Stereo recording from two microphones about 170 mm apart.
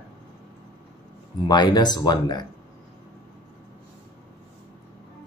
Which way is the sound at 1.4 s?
25° left (ahead or behind).